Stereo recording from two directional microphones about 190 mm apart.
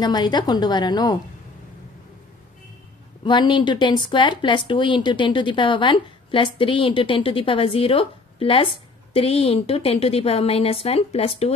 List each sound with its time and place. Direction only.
0.0 s speech: 20° left (ahead or behind)
3.3 s a woman's voice: 25° left (ahead or behind)